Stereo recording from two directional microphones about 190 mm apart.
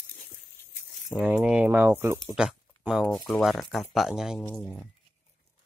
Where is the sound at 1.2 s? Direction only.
5° right (ahead or behind).